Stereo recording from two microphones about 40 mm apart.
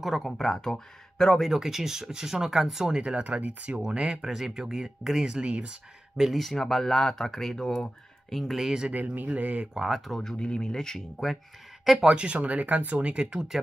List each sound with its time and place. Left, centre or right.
0.0 s speech: centre
1.5 s speech: centre
2.9 s speech: right
3.8 s speech: centre
5.4 s speech: right
6.1 s speech: centre
8.5 s speech: centre
8.9 s speech: right
9.3 s speech: right
9.8 s speech: centre
10.2 s speech: left
11.0 s speech: centre
12.0 s speech: right